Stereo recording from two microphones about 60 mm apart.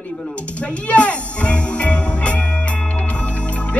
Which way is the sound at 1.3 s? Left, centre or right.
Left.